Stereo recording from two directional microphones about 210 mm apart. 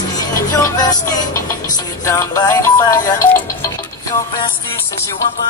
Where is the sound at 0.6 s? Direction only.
20° left (ahead or behind).